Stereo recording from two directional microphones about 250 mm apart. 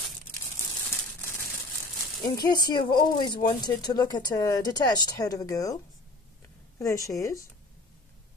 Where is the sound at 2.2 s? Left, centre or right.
Centre.